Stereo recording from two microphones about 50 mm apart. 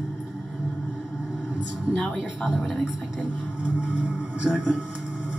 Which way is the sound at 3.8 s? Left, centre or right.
Centre.